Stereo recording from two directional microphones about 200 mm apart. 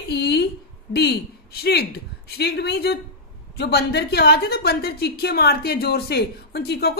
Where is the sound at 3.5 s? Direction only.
55° left (ahead or behind).